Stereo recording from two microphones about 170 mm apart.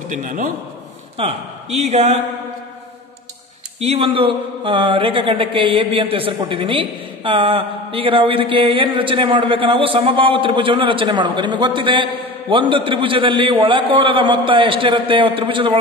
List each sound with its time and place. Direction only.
0.1 s a man's voice: 50° right (ahead or behind)
1.8 s a man's voice: 40° right (ahead or behind)
3.8 s a man's voice: 35° right (ahead or behind)